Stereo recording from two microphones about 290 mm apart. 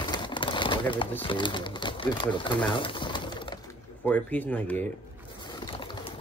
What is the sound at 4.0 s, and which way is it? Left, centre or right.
Speech, centre.